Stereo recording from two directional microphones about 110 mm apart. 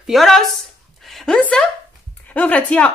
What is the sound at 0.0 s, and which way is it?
Speech, centre (ahead or behind).